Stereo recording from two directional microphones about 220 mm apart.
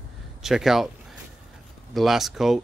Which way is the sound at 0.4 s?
Centre (ahead or behind).